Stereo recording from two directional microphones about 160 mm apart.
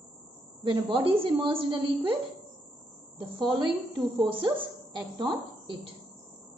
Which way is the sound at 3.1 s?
30° right (ahead or behind).